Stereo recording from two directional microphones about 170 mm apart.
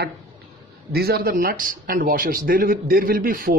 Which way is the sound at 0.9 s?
65° right (ahead or behind).